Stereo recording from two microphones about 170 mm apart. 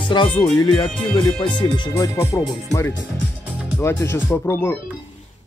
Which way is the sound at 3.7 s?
15° left (ahead or behind).